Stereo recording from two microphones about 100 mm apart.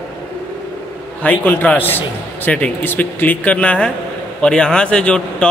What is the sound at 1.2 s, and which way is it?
A man's voice, 15° left (ahead or behind).